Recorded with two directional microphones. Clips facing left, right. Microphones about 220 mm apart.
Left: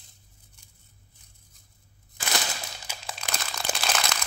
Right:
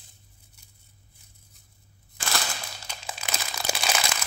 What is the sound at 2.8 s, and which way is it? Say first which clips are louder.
Crumpling: right 1 dB; centre (ahead or behind).